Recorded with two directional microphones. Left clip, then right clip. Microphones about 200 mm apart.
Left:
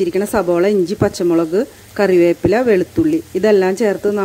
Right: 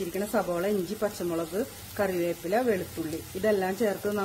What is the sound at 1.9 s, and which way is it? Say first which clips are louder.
Speech: left 16 dB; 40° left (ahead or behind).